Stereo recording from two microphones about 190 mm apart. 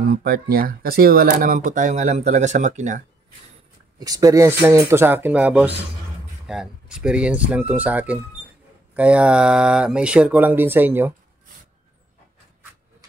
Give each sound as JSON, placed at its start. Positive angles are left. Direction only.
{"t": 0.1, "sound": "speech", "side_deg": -55}
{"t": 4.0, "sound": "speech", "side_deg": -20}